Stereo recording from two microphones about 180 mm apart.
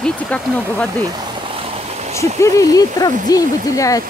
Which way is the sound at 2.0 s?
40° right (ahead or behind).